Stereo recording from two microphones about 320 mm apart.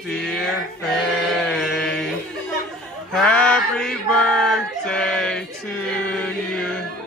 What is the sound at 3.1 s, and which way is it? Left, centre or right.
Mantra, centre.